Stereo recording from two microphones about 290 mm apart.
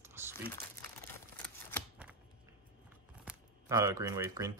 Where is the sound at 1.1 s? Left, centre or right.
Centre.